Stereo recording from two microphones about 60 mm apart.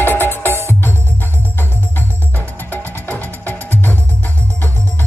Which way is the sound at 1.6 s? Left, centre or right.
Left.